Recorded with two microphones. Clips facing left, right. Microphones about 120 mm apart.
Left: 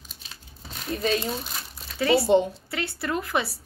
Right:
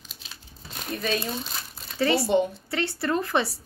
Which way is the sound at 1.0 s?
20° left (ahead or behind).